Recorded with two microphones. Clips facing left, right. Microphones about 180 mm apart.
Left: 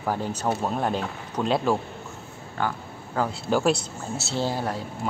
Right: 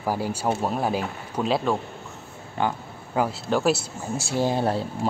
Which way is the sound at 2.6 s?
20° right (ahead or behind).